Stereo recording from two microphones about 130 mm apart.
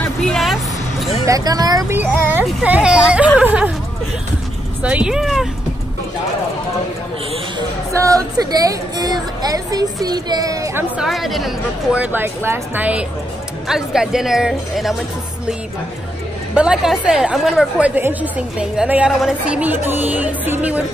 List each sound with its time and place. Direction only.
0.0 s music: 5° left (ahead or behind)
1.2 s speech: 30° right (ahead or behind)
2.6 s a woman's voice: 10° right (ahead or behind)
4.8 s speech: 5° right (ahead or behind)
7.9 s speech: 25° right (ahead or behind)
11.0 s speech: centre (ahead or behind)
12.0 s a woman's voice: 15° right (ahead or behind)
16.5 s a woman's voice: 5° right (ahead or behind)